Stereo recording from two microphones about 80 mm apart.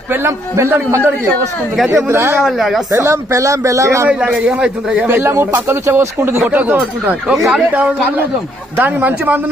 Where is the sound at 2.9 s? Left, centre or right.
Right.